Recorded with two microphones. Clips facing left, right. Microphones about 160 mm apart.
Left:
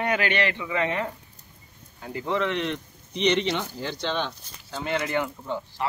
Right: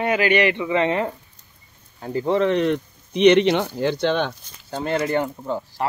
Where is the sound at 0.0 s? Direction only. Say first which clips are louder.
Right 6 dB; 10° right (ahead or behind).